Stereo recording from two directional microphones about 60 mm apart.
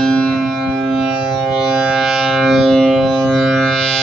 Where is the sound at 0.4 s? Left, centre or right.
Centre.